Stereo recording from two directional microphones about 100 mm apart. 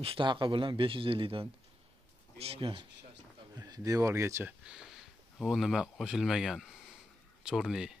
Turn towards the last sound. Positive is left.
turn(degrees=-5)  # may be behind; listen again after turning